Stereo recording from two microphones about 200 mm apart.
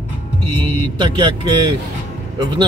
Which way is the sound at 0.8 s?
25° right (ahead or behind).